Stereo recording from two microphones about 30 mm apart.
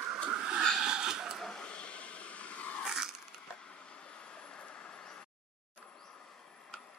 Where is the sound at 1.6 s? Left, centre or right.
Left.